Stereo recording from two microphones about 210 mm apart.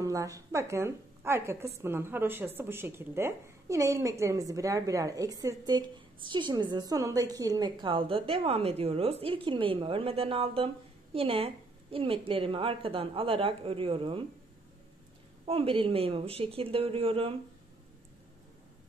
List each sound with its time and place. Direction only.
0.0 s a woman's voice: 15° right (ahead or behind)
15.4 s a woman's voice: 25° right (ahead or behind)